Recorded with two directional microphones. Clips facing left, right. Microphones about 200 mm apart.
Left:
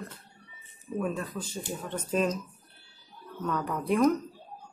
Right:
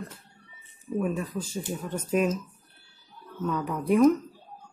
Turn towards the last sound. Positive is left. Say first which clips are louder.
# right 4 dB
turn(degrees=0)  # may be behind; listen again after turning